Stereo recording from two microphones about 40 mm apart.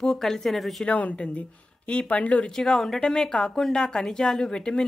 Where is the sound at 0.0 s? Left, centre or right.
Centre.